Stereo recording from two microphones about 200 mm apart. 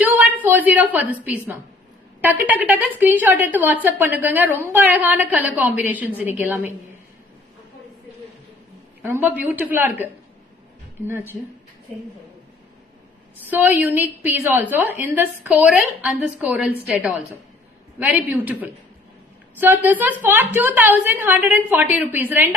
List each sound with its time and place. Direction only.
0.0 s a woman's voice: 10° right (ahead or behind)
9.0 s a woman's voice: 10° right (ahead or behind)
13.5 s a woman's voice: 10° right (ahead or behind)